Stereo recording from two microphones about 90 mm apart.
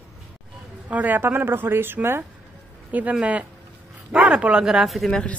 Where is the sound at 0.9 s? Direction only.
20° right (ahead or behind).